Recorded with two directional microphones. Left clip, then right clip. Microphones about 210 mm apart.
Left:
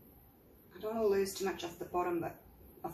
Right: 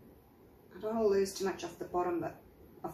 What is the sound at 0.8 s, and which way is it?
Speech, 15° right (ahead or behind).